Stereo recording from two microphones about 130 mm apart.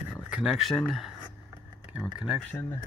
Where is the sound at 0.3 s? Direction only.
5° right (ahead or behind).